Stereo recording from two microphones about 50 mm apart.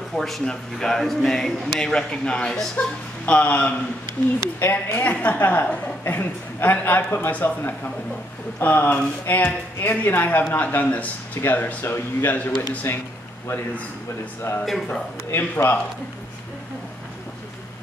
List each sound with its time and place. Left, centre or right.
0.1 s a woman's voice: centre; by 3.7 s left
4.6 s speech: left
5.0 s a woman's voice: left
6.0 s speech: left
14.5 s speech: left
15.3 s speech: left